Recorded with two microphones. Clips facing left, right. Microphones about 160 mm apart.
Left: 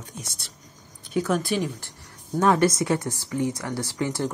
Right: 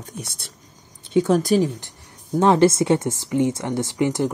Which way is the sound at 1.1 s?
25° right (ahead or behind).